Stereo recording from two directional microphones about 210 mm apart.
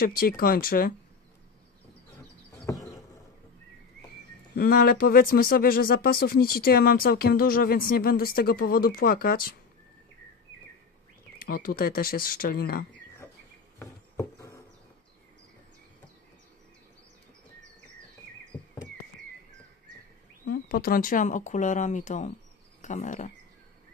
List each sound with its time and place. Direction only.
0.0 s speech: 45° left (ahead or behind)
2.5 s a sound: 15° left (ahead or behind)
4.6 s speech: 45° left (ahead or behind)
11.3 s speech: 40° left (ahead or behind)
13.2 s insect: 10° left (ahead or behind)
13.7 s a sound: 15° left (ahead or behind)
20.4 s speech: 45° left (ahead or behind)